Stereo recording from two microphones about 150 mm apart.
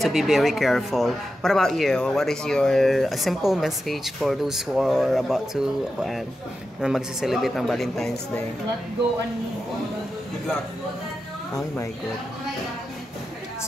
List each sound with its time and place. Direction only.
0.0 s speech: centre (ahead or behind)
11.5 s a woman's voice: 20° left (ahead or behind)